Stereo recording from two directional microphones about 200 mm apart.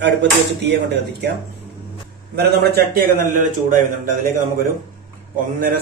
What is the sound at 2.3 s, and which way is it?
A man's voice, 50° right (ahead or behind).